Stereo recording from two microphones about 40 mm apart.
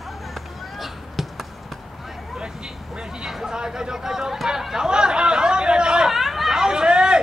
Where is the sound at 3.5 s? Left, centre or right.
Centre.